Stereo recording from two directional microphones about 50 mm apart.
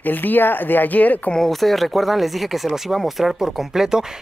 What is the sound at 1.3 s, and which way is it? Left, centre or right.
Speech, centre.